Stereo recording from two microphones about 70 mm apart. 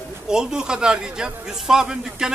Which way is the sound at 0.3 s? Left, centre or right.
Centre.